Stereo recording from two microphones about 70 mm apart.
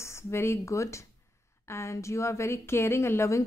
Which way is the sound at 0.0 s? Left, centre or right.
Left.